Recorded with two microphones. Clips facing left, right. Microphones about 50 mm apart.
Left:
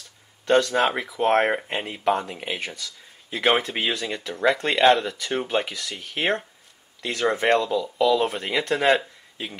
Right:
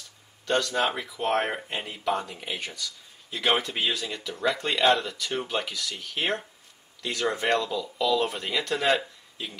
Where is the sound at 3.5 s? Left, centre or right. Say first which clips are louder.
Left 3 dB; centre.